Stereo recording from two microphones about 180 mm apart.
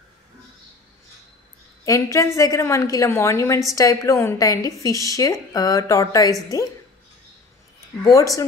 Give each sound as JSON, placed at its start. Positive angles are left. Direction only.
{"t": 1.9, "sound": "a woman's voice", "side_deg": 15}
{"t": 8.0, "sound": "a woman's voice", "side_deg": 20}